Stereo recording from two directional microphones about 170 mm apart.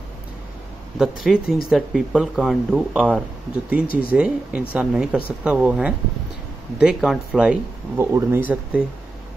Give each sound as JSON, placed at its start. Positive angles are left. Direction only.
{"t": 0.9, "sound": "speech", "side_deg": -5}
{"t": 3.8, "sound": "speech", "side_deg": 60}
{"t": 4.1, "sound": "speech", "side_deg": -10}